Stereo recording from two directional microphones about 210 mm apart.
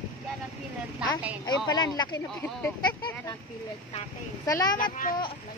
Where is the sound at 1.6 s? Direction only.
20° left (ahead or behind).